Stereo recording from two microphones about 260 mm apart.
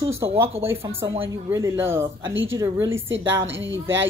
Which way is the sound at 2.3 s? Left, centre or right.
Right.